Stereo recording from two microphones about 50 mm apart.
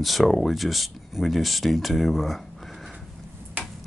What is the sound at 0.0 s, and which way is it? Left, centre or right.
Speech, centre.